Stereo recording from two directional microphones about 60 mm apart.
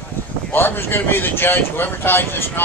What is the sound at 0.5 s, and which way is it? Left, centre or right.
Speech, left.